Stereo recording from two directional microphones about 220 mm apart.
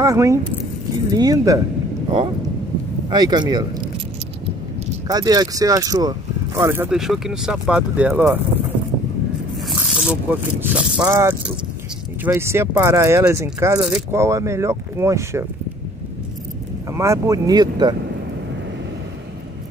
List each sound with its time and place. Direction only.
0.0 s speech: 15° right (ahead or behind)
3.1 s speech: 20° right (ahead or behind)
5.0 s speech: 15° right (ahead or behind)
9.7 s speech: centre (ahead or behind)
16.9 s speech: 15° right (ahead or behind)